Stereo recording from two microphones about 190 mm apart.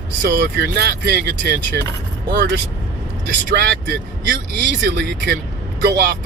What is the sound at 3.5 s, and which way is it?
Speech, 60° right (ahead or behind).